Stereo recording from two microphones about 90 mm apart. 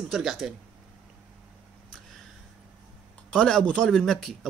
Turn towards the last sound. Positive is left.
turn(degrees=5)  # may be behind; listen again after turning